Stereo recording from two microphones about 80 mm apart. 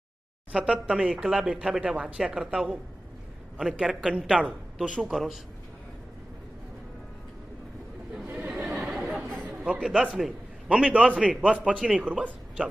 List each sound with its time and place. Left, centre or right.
0.5 s speech: centre
3.8 s a man's voice: centre
8.3 s chatter: centre
8.9 s chatter: centre
9.7 s a man's voice: centre
10.7 s speech: centre